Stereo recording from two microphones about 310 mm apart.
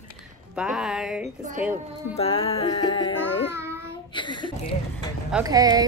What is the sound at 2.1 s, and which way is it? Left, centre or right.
Music, centre.